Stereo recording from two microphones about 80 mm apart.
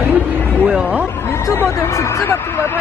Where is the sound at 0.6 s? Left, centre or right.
Centre.